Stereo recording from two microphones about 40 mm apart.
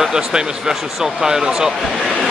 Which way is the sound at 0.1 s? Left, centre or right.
Centre.